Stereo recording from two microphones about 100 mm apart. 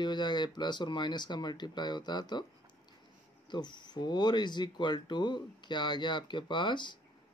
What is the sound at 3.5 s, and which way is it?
Speech, 50° left (ahead or behind).